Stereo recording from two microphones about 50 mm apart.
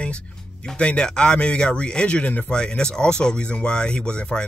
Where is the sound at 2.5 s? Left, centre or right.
Centre.